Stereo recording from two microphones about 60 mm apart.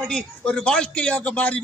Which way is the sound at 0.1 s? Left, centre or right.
Centre.